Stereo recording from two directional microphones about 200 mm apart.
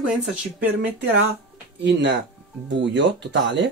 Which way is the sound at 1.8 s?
60° right (ahead or behind).